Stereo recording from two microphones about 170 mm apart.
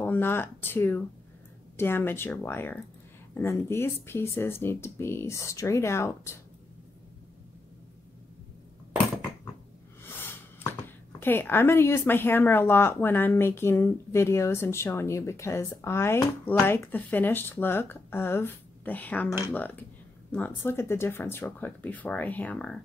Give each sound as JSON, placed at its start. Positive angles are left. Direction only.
{"t": 0.0, "sound": "speech", "side_deg": 10}
{"t": 10.1, "sound": "speech", "side_deg": 15}